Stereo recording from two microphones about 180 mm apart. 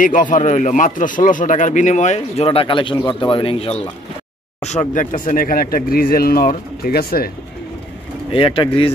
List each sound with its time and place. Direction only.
0.0 s a man's voice: 45° left (ahead or behind)
8.3 s speech: 30° left (ahead or behind)